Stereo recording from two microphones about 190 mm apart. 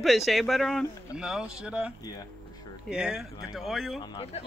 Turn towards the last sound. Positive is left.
turn(degrees=30)  # may be behind; listen again after turning